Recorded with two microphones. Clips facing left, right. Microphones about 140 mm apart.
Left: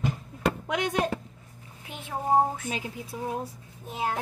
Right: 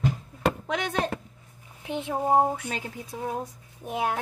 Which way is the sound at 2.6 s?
10° left (ahead or behind).